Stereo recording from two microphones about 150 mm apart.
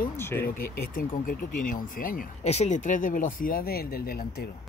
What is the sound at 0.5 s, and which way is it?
Speech, 70° left (ahead or behind).